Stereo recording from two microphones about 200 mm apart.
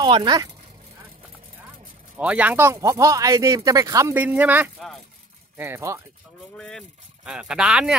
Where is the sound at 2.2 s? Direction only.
5° right (ahead or behind).